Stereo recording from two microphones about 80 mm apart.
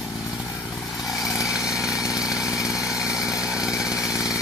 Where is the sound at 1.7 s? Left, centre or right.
Left.